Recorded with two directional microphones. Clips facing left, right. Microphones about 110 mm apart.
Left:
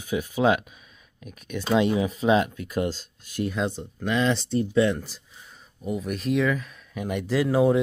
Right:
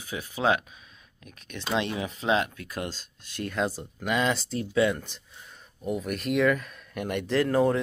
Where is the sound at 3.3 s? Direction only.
5° left (ahead or behind).